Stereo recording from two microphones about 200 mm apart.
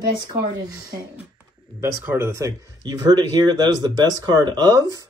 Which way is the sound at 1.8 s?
15° right (ahead or behind).